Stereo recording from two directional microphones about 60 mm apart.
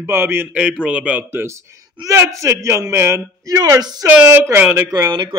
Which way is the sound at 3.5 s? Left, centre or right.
Right.